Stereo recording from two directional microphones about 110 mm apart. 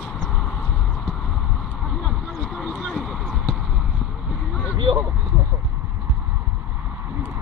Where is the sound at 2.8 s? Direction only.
Centre (ahead or behind).